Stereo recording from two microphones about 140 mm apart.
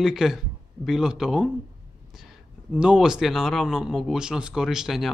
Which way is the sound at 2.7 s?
5° right (ahead or behind).